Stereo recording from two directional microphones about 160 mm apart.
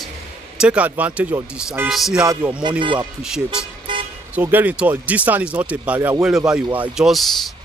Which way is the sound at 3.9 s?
30° right (ahead or behind).